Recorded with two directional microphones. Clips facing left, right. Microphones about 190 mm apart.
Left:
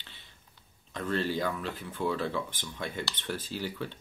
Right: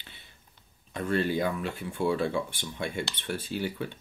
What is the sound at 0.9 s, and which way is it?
Speech, 10° right (ahead or behind).